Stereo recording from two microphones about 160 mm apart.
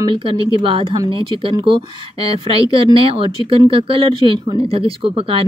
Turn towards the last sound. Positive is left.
turn(degrees=-35)  # may be behind; listen again after turning